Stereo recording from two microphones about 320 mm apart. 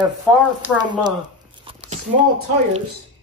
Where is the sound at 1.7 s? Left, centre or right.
Centre.